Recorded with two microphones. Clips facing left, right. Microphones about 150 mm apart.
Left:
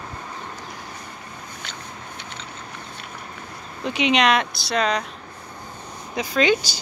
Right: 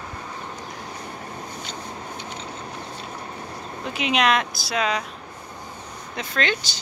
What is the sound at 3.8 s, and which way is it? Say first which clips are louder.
Speech: left 3 dB; centre (ahead or behind).